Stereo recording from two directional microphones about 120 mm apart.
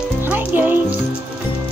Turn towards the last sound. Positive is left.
turn(degrees=-15)  # may be behind; listen again after turning